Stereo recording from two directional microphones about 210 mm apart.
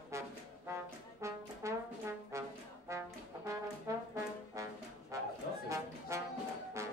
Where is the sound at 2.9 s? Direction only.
15° right (ahead or behind).